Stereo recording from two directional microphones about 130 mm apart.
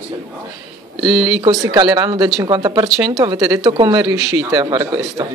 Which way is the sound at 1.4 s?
30° right (ahead or behind).